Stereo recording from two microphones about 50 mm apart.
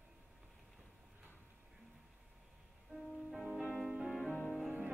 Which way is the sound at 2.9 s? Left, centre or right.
Centre.